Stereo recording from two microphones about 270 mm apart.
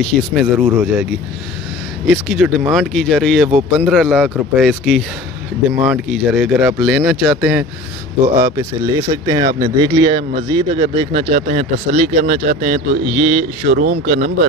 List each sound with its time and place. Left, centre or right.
0.0 s speech: centre
2.0 s speech: centre; by 14.3 s right